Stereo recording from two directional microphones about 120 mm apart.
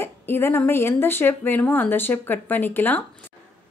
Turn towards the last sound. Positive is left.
turn(degrees=15)  # may be behind; listen again after turning